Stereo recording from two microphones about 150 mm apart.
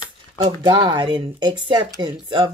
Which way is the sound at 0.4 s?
30° right (ahead or behind).